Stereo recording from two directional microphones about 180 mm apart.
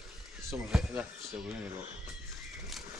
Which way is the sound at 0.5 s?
5° right (ahead or behind).